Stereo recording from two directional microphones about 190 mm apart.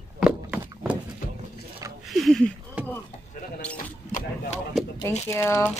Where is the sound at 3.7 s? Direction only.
45° left (ahead or behind).